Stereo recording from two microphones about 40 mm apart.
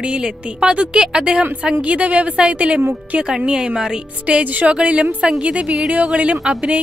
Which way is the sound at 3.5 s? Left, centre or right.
Centre.